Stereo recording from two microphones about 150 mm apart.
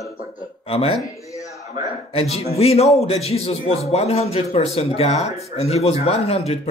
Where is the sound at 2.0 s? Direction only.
40° left (ahead or behind).